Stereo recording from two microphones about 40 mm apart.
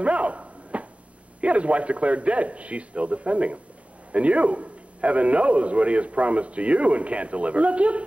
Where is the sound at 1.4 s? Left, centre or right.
Right.